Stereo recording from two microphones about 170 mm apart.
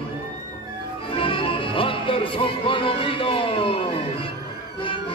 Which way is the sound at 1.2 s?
30° left (ahead or behind).